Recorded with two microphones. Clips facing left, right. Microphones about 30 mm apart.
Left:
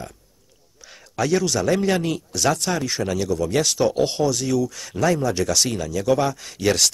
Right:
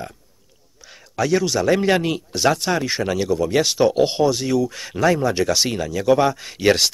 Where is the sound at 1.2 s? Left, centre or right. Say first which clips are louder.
Right 2 dB; centre.